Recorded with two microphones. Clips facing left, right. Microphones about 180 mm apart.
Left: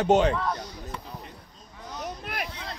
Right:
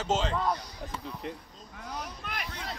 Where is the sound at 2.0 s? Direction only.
60° left (ahead or behind).